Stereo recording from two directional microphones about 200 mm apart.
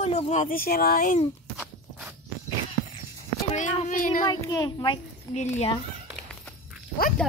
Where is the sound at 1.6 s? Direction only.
5° right (ahead or behind).